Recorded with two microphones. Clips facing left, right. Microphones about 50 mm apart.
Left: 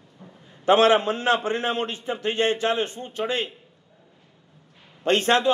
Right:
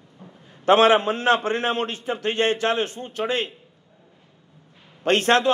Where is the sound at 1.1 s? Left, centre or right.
Right.